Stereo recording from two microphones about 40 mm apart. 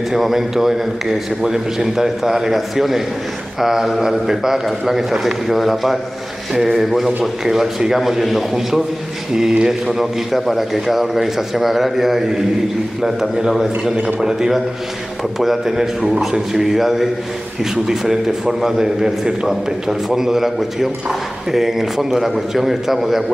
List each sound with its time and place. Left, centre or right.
0.1 s a man's voice: centre
9.9 s a man's voice: centre